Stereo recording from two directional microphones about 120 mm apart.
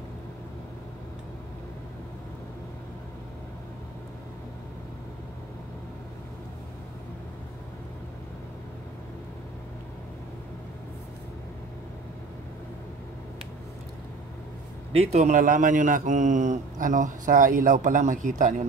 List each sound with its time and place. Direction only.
14.9 s a man's voice: 60° right (ahead or behind); by 18.5 s 90° right